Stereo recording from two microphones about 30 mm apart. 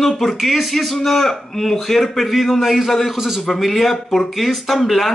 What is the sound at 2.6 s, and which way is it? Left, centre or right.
Speech, centre.